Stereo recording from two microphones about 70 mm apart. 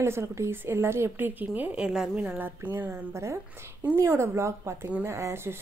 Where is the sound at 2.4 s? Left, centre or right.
Right.